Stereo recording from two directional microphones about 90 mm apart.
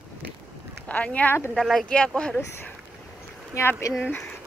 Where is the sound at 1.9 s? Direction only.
10° left (ahead or behind).